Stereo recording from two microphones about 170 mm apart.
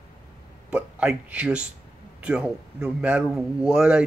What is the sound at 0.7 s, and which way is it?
Speech, 5° right (ahead or behind).